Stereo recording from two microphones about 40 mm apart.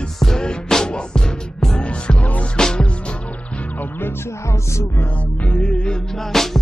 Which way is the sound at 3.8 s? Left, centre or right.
Left.